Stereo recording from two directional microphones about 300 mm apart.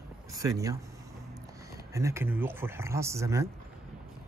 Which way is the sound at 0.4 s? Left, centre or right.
Centre.